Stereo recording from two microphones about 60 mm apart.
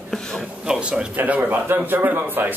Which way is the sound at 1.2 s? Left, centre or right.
Right.